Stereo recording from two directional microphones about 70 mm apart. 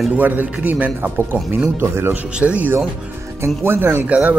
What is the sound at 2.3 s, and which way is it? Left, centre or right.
Speech, centre.